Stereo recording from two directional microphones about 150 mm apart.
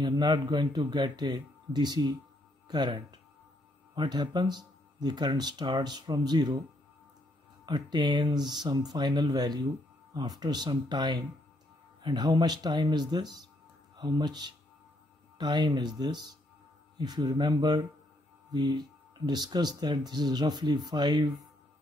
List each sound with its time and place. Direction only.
0.0 s speech: 30° right (ahead or behind)
7.6 s speech: 30° right (ahead or behind)